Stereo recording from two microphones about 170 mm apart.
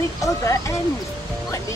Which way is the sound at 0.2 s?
20° left (ahead or behind).